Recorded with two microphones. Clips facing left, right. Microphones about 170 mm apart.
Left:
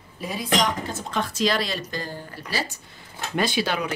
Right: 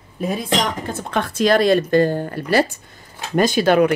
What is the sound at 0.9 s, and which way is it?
Speech, 60° right (ahead or behind).